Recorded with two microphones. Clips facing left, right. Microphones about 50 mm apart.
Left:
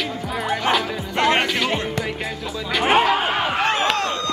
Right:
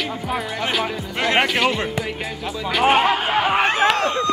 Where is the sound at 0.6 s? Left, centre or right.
Centre.